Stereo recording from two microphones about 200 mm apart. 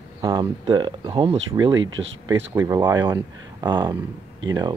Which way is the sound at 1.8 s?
70° right (ahead or behind).